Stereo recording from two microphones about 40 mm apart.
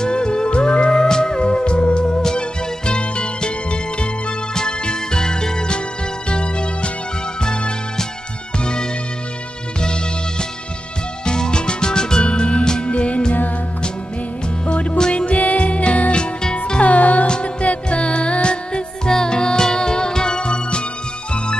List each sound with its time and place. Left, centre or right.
0.0 s music: left
11.2 s music: left
12.6 s music: centre
12.9 s music: left
14.7 s music: left
16.8 s music: left